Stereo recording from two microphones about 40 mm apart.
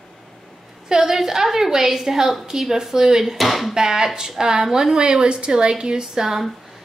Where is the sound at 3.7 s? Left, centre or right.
Centre.